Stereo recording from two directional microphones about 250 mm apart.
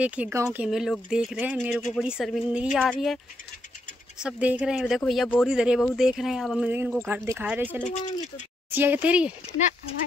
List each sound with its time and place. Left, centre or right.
0.0 s speech: centre
4.2 s speech: centre
7.9 s speech: left
8.7 s speech: centre